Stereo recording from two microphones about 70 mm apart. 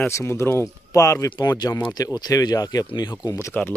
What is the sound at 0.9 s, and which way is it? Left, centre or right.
Speech, left.